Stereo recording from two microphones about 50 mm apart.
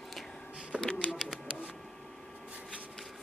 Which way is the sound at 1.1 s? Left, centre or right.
Centre.